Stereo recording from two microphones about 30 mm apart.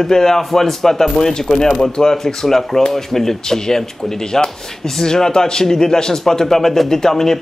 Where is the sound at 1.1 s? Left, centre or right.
Left.